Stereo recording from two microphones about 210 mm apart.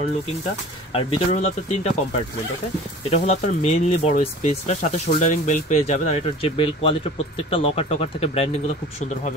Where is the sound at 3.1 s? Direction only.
30° left (ahead or behind).